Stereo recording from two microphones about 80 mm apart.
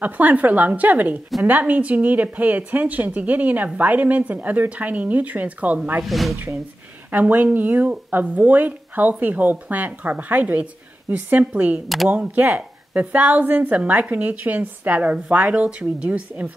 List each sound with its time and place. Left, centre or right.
0.0 s speech: right
6.0 s speech: centre
7.1 s speech: right